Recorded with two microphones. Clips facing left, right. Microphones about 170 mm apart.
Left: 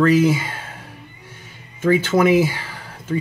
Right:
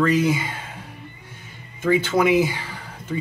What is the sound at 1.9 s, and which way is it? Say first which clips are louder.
Speech: left 2 dB; 5° left (ahead or behind).